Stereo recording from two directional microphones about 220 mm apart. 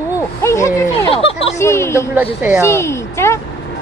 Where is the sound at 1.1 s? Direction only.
25° left (ahead or behind).